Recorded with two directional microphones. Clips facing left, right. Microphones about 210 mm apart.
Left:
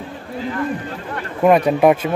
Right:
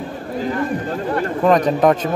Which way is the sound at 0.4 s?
40° right (ahead or behind).